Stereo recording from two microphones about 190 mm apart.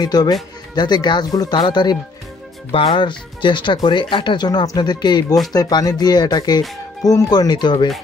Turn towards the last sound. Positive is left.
turn(degrees=25)  # may be behind; listen again after turning